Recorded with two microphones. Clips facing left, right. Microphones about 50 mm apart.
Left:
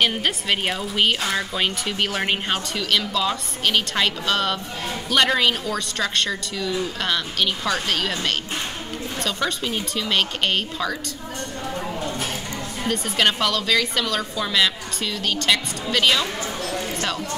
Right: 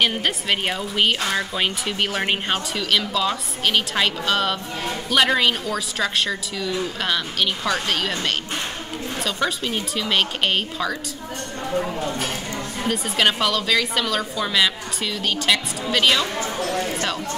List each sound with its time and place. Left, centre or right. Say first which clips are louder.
0.0 s speech: even; centre
12.8 s speech: even; centre
16.5 s speech: right 3 dB; right